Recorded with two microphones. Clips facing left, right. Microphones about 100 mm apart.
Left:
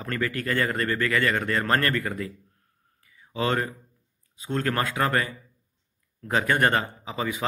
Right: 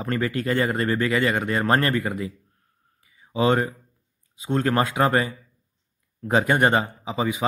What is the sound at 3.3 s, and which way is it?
Speech, 20° right (ahead or behind).